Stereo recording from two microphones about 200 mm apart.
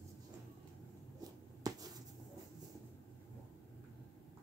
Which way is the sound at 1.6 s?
20° right (ahead or behind).